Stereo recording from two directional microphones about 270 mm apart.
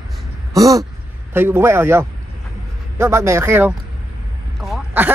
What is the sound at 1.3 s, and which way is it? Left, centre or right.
Speech, centre.